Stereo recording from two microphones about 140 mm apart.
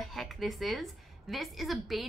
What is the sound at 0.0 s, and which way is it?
A woman's voice, centre (ahead or behind).